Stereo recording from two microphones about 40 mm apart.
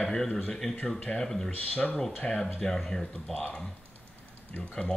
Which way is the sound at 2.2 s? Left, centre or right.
Left.